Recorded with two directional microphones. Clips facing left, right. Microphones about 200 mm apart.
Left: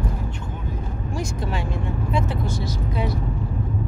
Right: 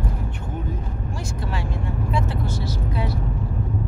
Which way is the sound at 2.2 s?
15° left (ahead or behind).